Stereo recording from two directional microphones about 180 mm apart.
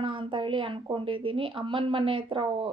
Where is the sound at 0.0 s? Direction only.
30° right (ahead or behind).